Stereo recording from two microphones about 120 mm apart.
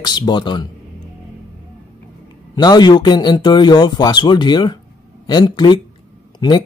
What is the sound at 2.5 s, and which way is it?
Speech, 35° left (ahead or behind).